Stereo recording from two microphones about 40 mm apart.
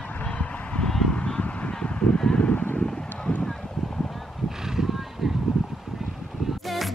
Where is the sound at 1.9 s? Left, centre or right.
Left.